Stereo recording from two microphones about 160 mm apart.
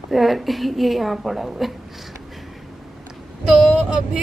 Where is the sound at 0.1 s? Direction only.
Centre (ahead or behind).